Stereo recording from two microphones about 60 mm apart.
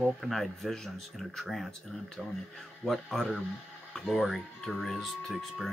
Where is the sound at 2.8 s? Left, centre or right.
Centre.